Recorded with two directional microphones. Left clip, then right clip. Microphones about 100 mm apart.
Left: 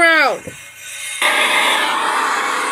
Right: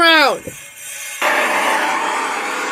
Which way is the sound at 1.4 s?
20° left (ahead or behind).